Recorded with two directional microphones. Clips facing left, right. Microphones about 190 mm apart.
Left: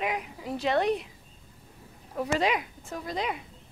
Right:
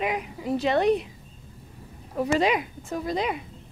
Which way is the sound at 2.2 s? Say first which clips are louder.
Right 4 dB; 10° right (ahead or behind).